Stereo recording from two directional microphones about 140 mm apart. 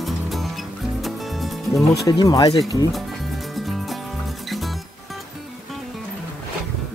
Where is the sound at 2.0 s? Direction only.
25° left (ahead or behind).